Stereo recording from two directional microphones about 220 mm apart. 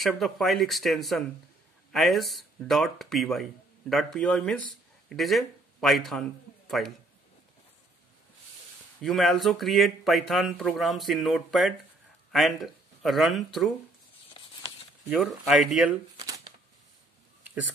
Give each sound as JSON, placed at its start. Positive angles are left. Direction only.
{"t": 0.0, "sound": "speech", "side_deg": 0}
{"t": 9.0, "sound": "speech", "side_deg": 0}
{"t": 14.3, "sound": "a sound", "side_deg": 20}
{"t": 15.0, "sound": "speech", "side_deg": 0}